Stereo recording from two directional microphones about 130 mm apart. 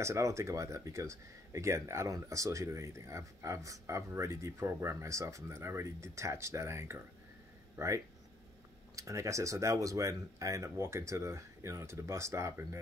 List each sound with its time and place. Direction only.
0.0 s speech: 20° right (ahead or behind)